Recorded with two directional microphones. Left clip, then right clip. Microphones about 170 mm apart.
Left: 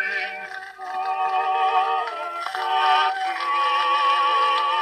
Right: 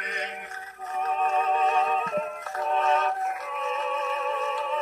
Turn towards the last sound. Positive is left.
turn(degrees=40)  # may be behind; listen again after turning